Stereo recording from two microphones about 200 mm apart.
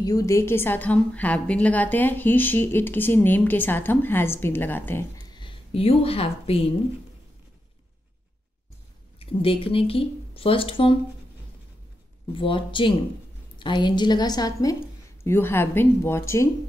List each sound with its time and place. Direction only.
0.0 s a woman's voice: 15° left (ahead or behind)
9.2 s speech: 30° left (ahead or behind)
12.4 s a woman's voice: 25° left (ahead or behind)